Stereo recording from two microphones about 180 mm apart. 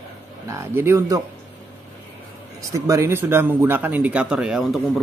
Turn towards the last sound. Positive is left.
turn(degrees=0)  # may be behind; listen again after turning